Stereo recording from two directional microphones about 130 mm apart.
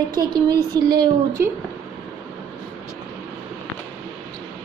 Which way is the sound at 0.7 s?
30° right (ahead or behind).